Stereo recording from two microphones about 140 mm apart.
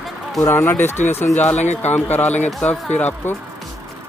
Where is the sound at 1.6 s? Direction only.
55° left (ahead or behind).